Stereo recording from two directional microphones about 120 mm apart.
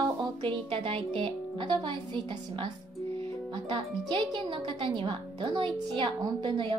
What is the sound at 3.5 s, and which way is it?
Speech, 40° right (ahead or behind).